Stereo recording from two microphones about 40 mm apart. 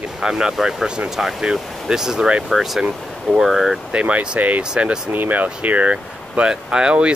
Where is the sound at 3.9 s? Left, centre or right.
Right.